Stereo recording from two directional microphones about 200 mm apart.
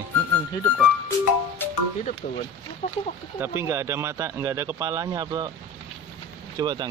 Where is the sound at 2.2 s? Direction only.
50° left (ahead or behind).